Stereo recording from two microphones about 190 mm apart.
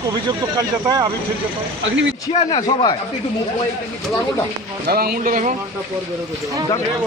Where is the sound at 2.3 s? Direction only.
30° left (ahead or behind).